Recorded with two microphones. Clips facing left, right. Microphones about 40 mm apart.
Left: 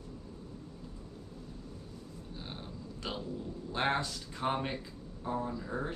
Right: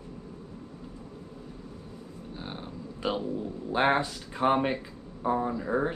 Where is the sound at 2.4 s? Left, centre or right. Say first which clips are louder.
Right 6 dB; right.